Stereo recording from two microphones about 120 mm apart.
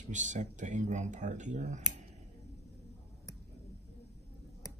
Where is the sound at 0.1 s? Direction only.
90° right.